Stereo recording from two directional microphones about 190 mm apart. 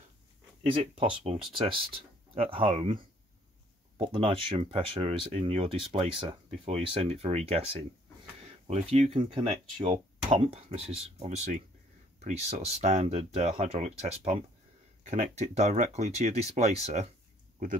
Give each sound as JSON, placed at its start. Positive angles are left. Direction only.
{"t": 0.7, "sound": "speech", "side_deg": -30}
{"t": 4.0, "sound": "speech", "side_deg": -30}
{"t": 8.6, "sound": "speech", "side_deg": -35}